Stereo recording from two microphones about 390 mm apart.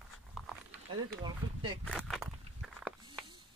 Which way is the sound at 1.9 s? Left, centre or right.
Centre.